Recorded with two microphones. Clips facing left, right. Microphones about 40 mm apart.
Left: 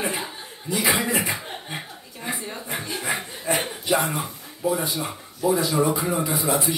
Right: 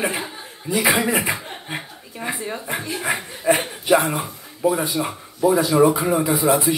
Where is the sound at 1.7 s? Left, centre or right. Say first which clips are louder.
Right 3 dB; right.